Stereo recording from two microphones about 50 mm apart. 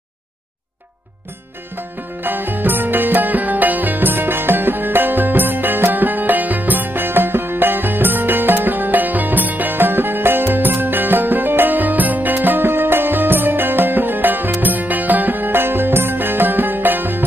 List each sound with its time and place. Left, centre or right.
1.8 s music: right